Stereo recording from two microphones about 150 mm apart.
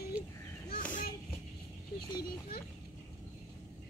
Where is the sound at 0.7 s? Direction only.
65° left (ahead or behind).